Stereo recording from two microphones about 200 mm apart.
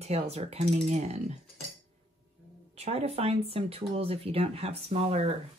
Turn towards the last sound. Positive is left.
turn(degrees=-30)  # may be behind; listen again after turning